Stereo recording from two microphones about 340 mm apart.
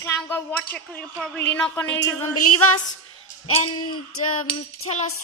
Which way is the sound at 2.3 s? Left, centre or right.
Left.